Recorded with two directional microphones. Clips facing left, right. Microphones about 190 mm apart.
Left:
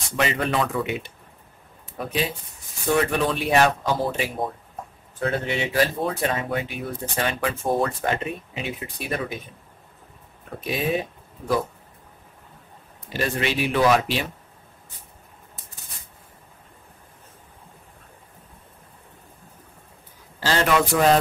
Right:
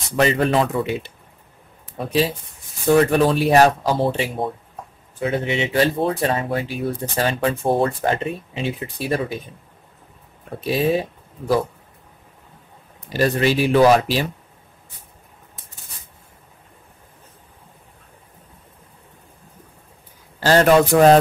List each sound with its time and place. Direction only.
0.1 s speech: 30° right (ahead or behind)
10.6 s speech: 30° right (ahead or behind)
13.1 s speech: 35° right (ahead or behind)
20.4 s a man's voice: 45° right (ahead or behind)